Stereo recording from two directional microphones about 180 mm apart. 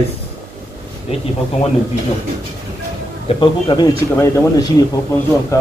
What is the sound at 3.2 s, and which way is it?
Speech, 25° left (ahead or behind).